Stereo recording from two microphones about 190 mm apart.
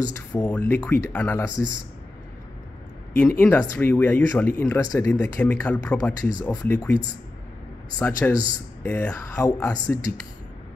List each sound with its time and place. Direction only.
0.4 s speech: 10° left (ahead or behind)
3.2 s speech: 10° left (ahead or behind)
6.9 s a man's voice: 25° right (ahead or behind)
8.0 s speech: 20° left (ahead or behind)